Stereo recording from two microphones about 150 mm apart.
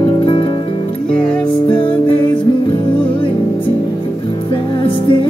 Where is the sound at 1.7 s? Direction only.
35° left (ahead or behind).